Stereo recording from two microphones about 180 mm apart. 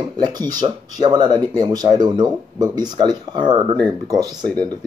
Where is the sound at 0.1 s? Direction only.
25° right (ahead or behind).